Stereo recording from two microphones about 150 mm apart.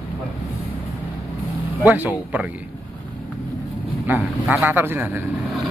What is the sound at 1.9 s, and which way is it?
Speech, 10° right (ahead or behind).